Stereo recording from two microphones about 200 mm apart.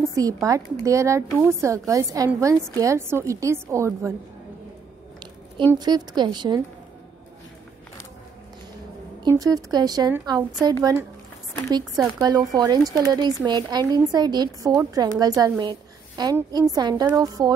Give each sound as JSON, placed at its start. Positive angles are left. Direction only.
{"t": 0.1, "sound": "a woman's voice", "side_deg": -15}
{"t": 5.7, "sound": "speech", "side_deg": -20}
{"t": 9.2, "sound": "a woman's voice", "side_deg": -20}